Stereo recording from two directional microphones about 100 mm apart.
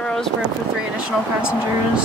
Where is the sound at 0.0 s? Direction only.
5° left (ahead or behind).